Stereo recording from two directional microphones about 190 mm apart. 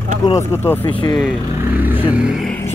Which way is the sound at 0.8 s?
25° left (ahead or behind).